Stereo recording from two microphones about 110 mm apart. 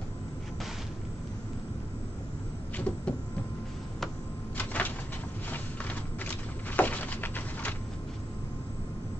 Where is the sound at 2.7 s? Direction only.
15° left (ahead or behind).